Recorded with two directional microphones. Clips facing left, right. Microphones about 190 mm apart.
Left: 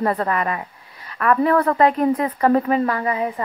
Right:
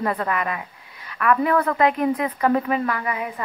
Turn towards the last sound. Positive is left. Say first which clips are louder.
# left 5 dB
turn(degrees=30)  # may be behind; listen again after turning